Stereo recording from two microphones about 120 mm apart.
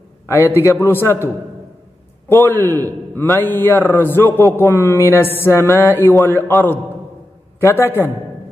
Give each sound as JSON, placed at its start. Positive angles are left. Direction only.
{"t": 0.3, "sound": "a man's voice", "side_deg": 20}
{"t": 7.6, "sound": "a man's voice", "side_deg": 20}